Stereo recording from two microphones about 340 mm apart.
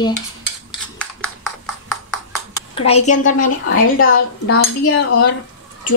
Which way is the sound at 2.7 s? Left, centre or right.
Centre.